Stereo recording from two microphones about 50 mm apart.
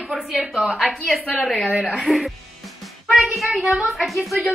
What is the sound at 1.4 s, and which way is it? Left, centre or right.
Speech, centre.